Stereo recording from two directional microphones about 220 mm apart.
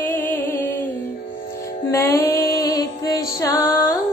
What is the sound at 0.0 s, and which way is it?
Music, 10° left (ahead or behind).